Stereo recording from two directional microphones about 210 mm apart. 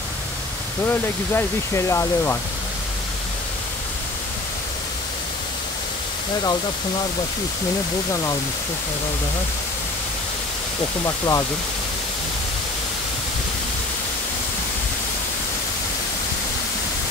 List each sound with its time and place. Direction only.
0.8 s speech: 10° left (ahead or behind)
11.1 s speech: 15° left (ahead or behind)